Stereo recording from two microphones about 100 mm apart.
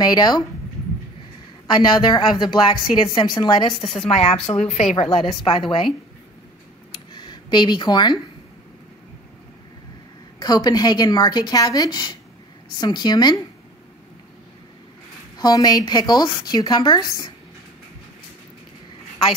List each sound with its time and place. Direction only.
0.0 s a woman's voice: 45° left (ahead or behind)
1.7 s a woman's voice: 50° left (ahead or behind)
4.1 s speech: 90° left
5.3 s a woman's voice: 65° left (ahead or behind)
6.9 s a sound: 50° left (ahead or behind)
10.4 s a woman's voice: 40° left (ahead or behind)
15.3 s a woman's voice: 40° left (ahead or behind)